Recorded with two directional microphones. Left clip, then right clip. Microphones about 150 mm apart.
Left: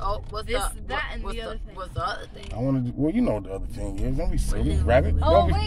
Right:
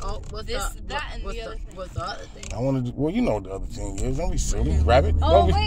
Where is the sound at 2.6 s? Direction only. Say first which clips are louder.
Right 1 dB; 5° right (ahead or behind).